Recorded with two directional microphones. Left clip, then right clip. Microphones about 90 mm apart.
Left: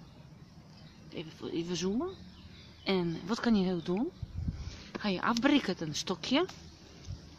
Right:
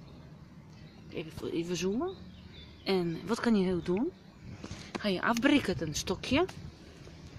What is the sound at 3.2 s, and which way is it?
Speech, 10° left (ahead or behind).